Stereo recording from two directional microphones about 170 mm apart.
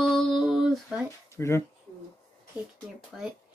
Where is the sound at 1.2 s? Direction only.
15° left (ahead or behind).